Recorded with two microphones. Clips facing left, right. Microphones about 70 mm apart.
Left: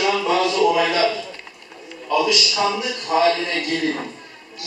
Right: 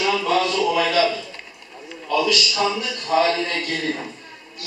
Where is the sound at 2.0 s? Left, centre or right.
Centre.